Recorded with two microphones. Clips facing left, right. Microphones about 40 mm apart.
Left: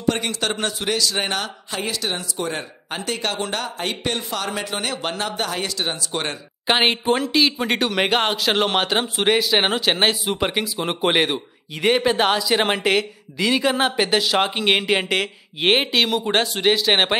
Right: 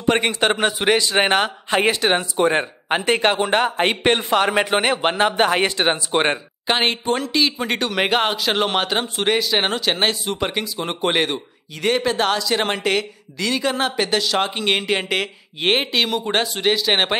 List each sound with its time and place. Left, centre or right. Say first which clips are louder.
0.0 s a man's voice: right 4 dB; right
6.7 s speech: left 1 dB; centre